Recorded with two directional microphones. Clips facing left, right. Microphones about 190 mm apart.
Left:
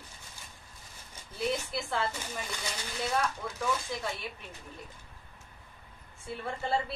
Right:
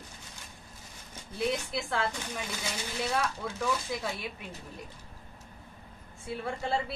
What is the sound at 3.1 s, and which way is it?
Speech, centre (ahead or behind).